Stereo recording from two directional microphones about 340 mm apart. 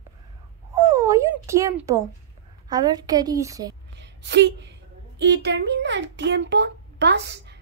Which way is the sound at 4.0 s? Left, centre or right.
Right.